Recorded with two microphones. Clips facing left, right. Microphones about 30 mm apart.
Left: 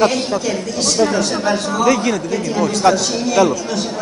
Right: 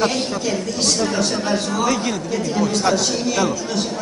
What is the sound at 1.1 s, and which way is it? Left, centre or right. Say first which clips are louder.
A woman's voice: left 3 dB; centre.